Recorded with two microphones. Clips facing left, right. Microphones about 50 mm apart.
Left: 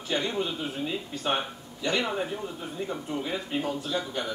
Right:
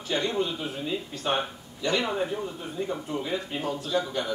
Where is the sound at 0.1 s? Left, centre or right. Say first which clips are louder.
Right 2 dB; centre.